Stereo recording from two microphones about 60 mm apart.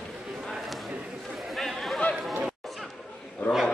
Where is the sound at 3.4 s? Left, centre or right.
Left.